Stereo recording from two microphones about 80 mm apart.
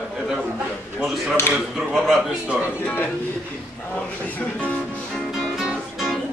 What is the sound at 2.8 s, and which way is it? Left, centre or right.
Speech, left.